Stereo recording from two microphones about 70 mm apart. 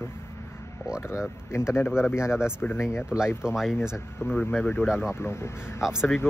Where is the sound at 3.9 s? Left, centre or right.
Left.